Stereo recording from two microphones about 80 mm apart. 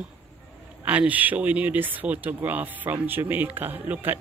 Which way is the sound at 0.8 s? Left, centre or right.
Centre.